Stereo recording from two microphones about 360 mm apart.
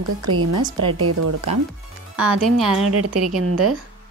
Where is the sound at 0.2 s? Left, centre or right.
Right.